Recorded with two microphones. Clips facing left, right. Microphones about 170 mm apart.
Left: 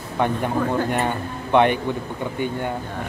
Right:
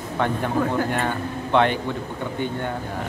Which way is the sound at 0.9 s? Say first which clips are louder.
Left 1 dB; 15° left (ahead or behind).